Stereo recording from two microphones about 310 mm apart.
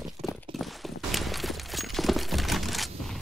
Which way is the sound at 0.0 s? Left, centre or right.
Centre.